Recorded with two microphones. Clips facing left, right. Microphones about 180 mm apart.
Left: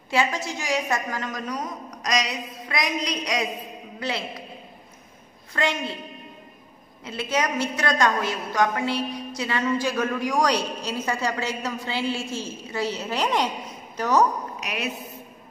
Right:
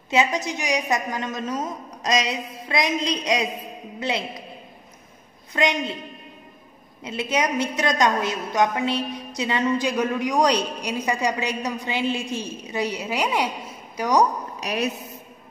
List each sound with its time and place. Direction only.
0.1 s a woman's voice: 20° right (ahead or behind)
5.5 s a woman's voice: 20° right (ahead or behind)
7.1 s a woman's voice: 20° right (ahead or behind)
14.6 s a woman's voice: 35° right (ahead or behind)